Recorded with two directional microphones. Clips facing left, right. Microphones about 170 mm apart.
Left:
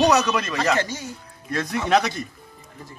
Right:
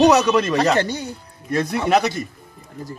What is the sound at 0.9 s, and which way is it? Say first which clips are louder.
Speech: right 5 dB; 65° right (ahead or behind).